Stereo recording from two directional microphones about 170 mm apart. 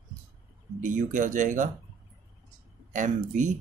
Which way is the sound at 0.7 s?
50° right (ahead or behind).